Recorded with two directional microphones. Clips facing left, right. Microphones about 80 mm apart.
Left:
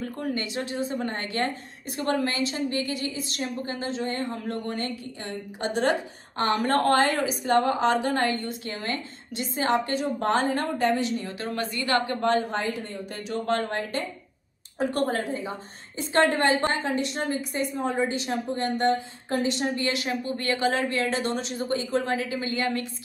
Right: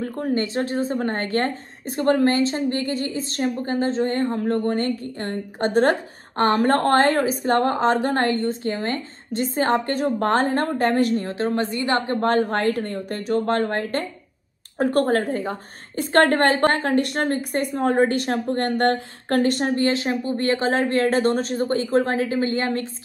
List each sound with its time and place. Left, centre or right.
0.0 s a woman's voice: right
11.5 s a woman's voice: right
12.2 s a woman's voice: right
19.8 s a woman's voice: right
20.8 s a woman's voice: right